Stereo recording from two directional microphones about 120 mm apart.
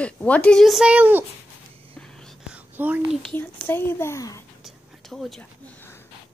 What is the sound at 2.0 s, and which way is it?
Whispering, 5° left (ahead or behind).